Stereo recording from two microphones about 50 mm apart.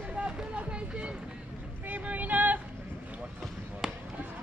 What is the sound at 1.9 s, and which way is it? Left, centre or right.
Vehicle, right.